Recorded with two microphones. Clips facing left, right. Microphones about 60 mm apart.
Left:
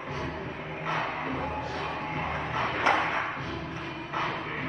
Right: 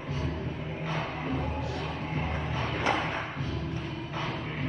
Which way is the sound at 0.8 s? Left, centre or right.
Left.